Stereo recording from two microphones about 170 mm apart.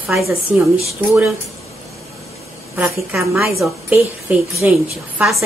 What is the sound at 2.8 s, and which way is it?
Speech, centre (ahead or behind).